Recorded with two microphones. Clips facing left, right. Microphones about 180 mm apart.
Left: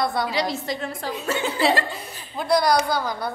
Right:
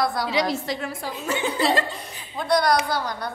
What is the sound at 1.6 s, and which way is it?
A woman's voice, 5° left (ahead or behind).